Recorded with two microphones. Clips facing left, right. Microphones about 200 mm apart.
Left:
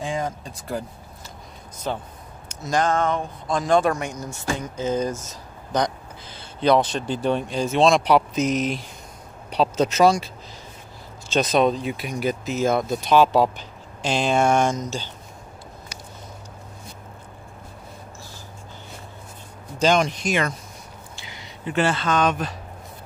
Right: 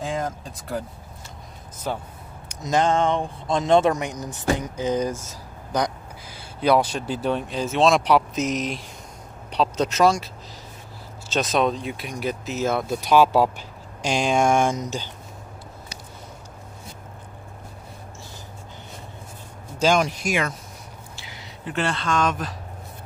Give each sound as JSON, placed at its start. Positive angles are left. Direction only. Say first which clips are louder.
{"t": 0.0, "sound": "vehicle", "louder": "even", "side_deg": 0}
{"t": 1.9, "sound": "speech", "louder": "left 1 dB", "side_deg": -5}
{"t": 2.4, "sound": "speech", "louder": "right 1 dB", "side_deg": -20}
{"t": 19.8, "sound": "speech", "louder": "left 1 dB", "side_deg": -5}